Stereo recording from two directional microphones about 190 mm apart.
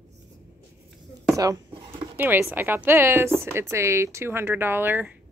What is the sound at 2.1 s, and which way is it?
A woman's voice, 10° right (ahead or behind).